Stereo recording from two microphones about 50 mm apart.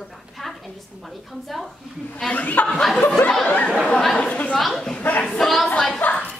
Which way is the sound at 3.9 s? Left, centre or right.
Centre.